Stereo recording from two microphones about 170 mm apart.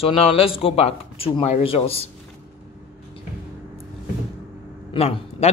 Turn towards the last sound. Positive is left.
turn(degrees=35)  # may be behind; listen again after turning